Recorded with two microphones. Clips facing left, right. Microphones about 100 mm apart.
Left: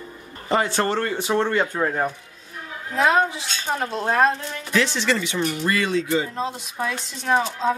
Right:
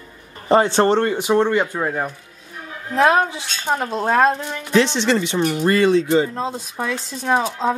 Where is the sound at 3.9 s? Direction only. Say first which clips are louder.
Right 3 dB; 20° right (ahead or behind).